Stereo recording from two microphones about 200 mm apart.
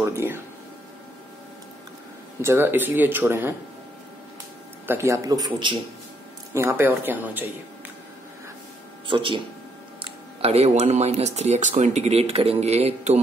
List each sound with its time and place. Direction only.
0.0 s speech: 10° right (ahead or behind)
2.4 s speech: 10° right (ahead or behind)
4.8 s speech: 15° right (ahead or behind)
9.0 s speech: 25° right (ahead or behind)